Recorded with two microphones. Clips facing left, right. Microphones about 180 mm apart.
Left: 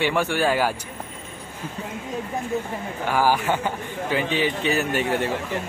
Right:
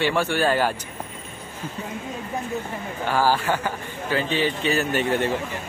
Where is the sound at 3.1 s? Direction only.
15° left (ahead or behind).